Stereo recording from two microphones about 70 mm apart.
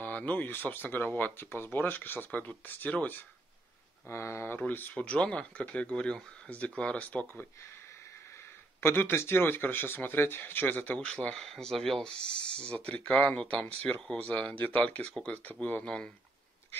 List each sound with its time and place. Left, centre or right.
0.0 s speech: left
4.1 s speech: left
4.6 s speech: left
8.8 s speech: left
11.3 s speech: centre